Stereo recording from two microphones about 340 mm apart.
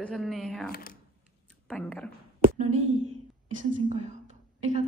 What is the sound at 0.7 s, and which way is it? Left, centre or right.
Speech, left.